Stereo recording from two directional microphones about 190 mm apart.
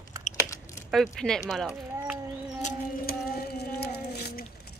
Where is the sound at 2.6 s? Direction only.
50° left (ahead or behind).